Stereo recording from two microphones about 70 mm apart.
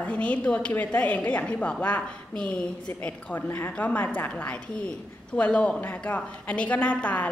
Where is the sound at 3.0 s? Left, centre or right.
Left.